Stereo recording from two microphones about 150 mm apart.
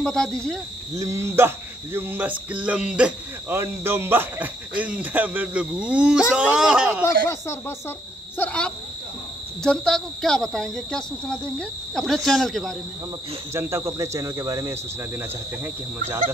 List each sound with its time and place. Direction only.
0.0 s speech: 5° left (ahead or behind)
0.9 s speech: 20° right (ahead or behind)
8.4 s speech: 5° left (ahead or behind)
13.5 s speech: 15° right (ahead or behind)